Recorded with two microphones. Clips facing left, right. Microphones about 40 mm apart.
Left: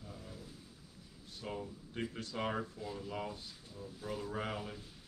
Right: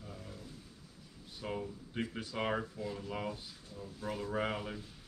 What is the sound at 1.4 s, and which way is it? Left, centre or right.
Speech, centre.